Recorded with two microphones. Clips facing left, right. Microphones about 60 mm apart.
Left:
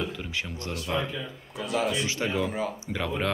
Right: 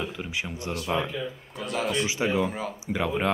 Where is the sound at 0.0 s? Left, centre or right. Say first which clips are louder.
Even; centre.